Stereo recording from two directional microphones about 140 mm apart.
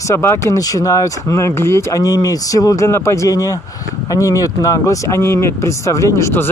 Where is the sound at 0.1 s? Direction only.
20° left (ahead or behind).